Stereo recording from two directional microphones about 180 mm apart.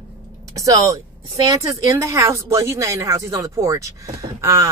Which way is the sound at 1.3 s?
20° right (ahead or behind).